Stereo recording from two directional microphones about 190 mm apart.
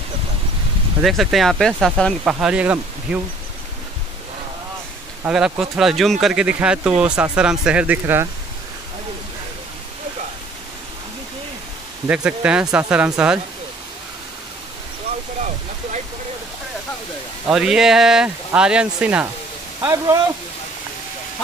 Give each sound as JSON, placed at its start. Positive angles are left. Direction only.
{"t": 1.0, "sound": "speech", "side_deg": 0}
{"t": 5.2, "sound": "speech", "side_deg": -5}
{"t": 12.1, "sound": "speech", "side_deg": -5}
{"t": 17.5, "sound": "speech", "side_deg": -5}
{"t": 19.8, "sound": "a man's voice", "side_deg": -20}